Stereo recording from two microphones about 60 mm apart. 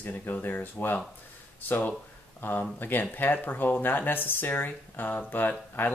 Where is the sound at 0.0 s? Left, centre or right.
Left.